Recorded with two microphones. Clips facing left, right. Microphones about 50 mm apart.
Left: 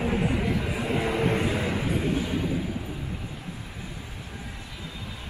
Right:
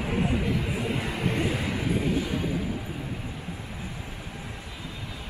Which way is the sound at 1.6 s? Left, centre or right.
Centre.